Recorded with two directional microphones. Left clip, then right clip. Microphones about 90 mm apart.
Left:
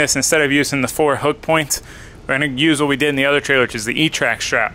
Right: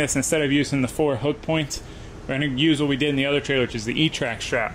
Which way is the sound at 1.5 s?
30° left (ahead or behind).